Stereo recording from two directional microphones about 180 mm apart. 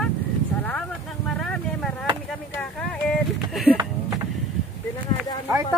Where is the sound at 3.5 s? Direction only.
5° right (ahead or behind).